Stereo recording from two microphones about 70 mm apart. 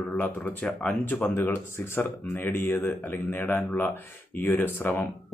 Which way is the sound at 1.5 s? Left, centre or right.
Left.